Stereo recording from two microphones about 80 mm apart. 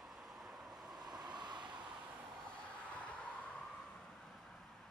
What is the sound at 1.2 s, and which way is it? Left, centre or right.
Vehicle, right.